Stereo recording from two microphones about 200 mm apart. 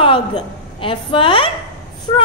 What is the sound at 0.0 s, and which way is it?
A woman's voice, 25° left (ahead or behind).